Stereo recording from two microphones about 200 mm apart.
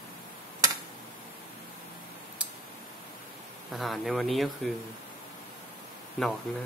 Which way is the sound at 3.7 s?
Centre (ahead or behind).